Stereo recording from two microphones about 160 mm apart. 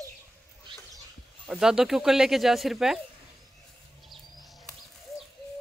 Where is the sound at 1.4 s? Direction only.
5° right (ahead or behind).